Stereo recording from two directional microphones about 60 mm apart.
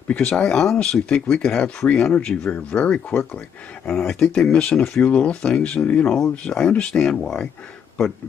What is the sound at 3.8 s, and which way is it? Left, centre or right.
Speech, centre.